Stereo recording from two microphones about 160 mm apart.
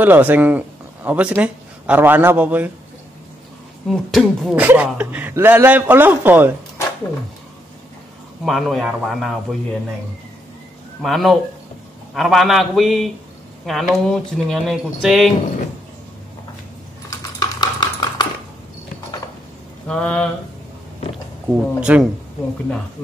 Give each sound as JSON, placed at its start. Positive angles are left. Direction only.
{"t": 0.0, "sound": "speech", "side_deg": -10}
{"t": 3.9, "sound": "a man's voice", "side_deg": 0}
{"t": 8.5, "sound": "speech", "side_deg": 0}
{"t": 11.0, "sound": "speech", "side_deg": 0}
{"t": 17.1, "sound": "typing", "side_deg": 25}
{"t": 19.9, "sound": "speech", "side_deg": 5}
{"t": 21.5, "sound": "a man's voice", "side_deg": -10}